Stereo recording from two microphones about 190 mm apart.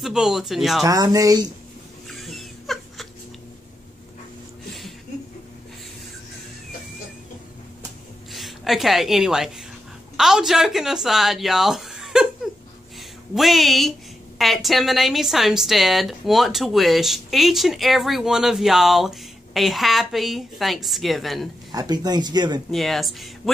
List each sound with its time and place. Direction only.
0.0 s a woman's voice: centre (ahead or behind)
0.8 s speech: 20° right (ahead or behind)
2.0 s a sound: centre (ahead or behind)
8.3 s a woman's voice: centre (ahead or behind)
13.3 s a woman's voice: centre (ahead or behind)
21.7 s speech: 20° right (ahead or behind)
22.7 s a woman's voice: centre (ahead or behind)